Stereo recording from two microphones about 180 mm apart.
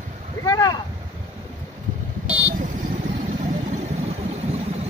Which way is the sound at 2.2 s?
35° right (ahead or behind).